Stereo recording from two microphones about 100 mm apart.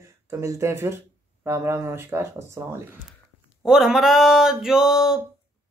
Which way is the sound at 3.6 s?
5° right (ahead or behind).